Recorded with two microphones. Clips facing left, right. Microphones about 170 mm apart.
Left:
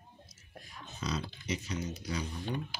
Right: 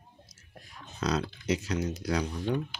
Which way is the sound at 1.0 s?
80° right.